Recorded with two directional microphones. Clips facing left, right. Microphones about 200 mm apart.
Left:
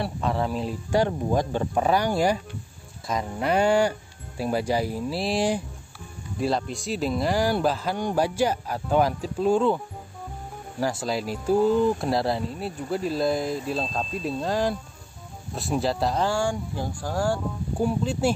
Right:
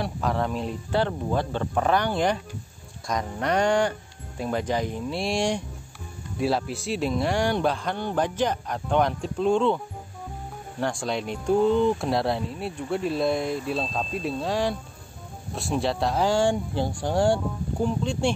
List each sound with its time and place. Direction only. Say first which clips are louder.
0.0 s speech: even; centre (ahead or behind)
0.9 s speech: left 2 dB; 15° left (ahead or behind)
10.8 s speech: left 1 dB; 5° left (ahead or behind)
16.2 s speech: right 3 dB; 20° right (ahead or behind)
17.7 s speech: left 2 dB; 5° left (ahead or behind)